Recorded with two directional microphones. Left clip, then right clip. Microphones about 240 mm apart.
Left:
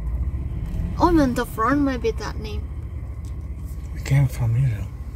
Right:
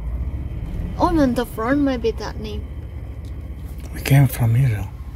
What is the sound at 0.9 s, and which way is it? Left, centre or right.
Speech, centre.